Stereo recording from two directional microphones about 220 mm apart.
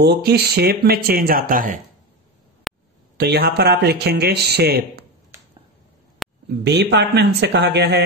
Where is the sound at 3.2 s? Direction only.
50° right (ahead or behind).